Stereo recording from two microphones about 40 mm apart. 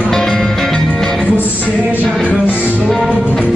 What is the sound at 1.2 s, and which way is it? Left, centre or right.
Music, left.